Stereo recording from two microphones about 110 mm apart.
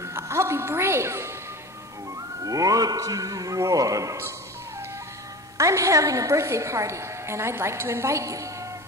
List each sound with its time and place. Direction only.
0.0 s music: 25° right (ahead or behind)
2.4 s a man's voice: 30° right (ahead or behind)
5.6 s a woman's voice: 30° right (ahead or behind)